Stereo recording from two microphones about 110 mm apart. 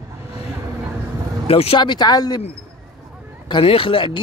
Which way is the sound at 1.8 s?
40° left (ahead or behind).